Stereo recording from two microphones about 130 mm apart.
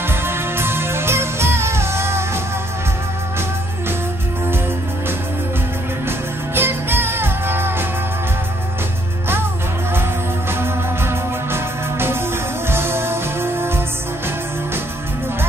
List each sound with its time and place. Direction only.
0.1 s music: 20° right (ahead or behind)
6.0 s music: 15° right (ahead or behind)
10.6 s music: 20° right (ahead or behind)